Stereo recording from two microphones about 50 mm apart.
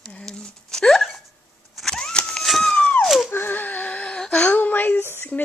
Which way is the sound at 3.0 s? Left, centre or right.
Centre.